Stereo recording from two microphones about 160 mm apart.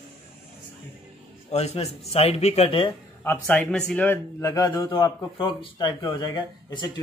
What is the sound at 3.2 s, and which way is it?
A man's voice, 10° left (ahead or behind).